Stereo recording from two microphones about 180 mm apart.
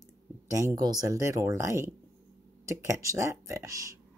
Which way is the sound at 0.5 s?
15° right (ahead or behind).